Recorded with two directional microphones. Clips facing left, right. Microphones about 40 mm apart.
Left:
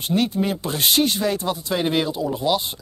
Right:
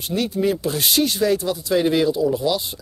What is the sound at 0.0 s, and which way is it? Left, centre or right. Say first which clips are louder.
Speech: even; centre.